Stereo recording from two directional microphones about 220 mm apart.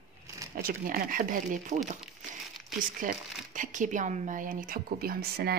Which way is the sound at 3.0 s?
40° right (ahead or behind).